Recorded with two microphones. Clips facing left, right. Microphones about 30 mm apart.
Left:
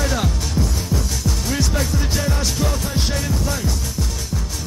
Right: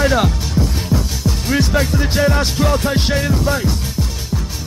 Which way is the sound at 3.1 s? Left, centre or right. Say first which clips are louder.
Right 6 dB; right.